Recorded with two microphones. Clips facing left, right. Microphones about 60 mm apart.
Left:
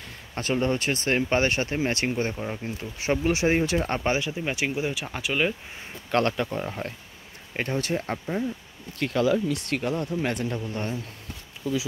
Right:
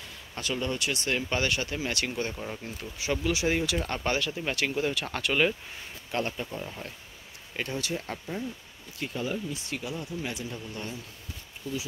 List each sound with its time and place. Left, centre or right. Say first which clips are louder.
0.3 s speech: left 6 dB; left
2.3 s speech: left 5 dB; centre
2.6 s speech: left 5 dB; left
4.0 s speech: left 3 dB; left
6.1 s speech: left 8 dB; left
6.6 s speech: left 7 dB; left
9.0 s speech: left 9 dB; left